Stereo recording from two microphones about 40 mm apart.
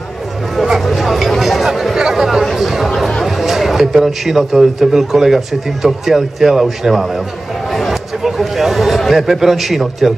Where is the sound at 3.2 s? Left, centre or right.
Centre.